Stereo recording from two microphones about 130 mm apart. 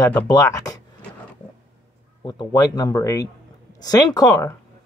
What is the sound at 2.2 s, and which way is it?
Speech, 30° left (ahead or behind).